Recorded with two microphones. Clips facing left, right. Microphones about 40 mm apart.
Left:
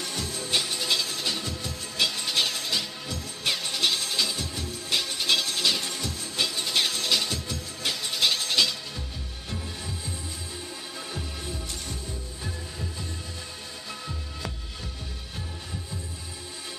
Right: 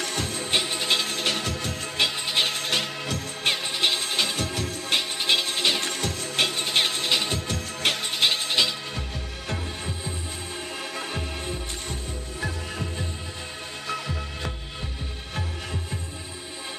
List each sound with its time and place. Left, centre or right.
0.0 s music: right
0.5 s music: right
2.0 s music: right
2.5 s music: right
3.4 s music: right
4.1 s music: right
4.5 s music: right
4.8 s music: right
5.8 s music: right
7.3 s music: right
11.0 s music: right